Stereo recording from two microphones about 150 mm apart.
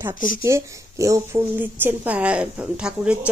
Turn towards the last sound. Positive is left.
turn(degrees=-5)  # may be behind; listen again after turning